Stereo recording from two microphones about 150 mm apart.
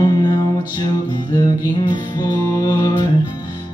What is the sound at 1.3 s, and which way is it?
Music, 25° left (ahead or behind).